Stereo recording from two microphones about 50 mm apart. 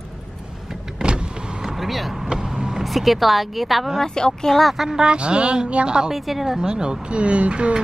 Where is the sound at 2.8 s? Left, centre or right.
Centre.